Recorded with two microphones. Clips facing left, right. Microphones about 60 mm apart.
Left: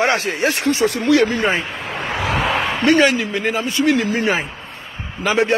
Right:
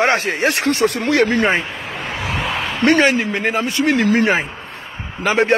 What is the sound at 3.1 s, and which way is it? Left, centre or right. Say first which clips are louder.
Speech: right 2 dB; right.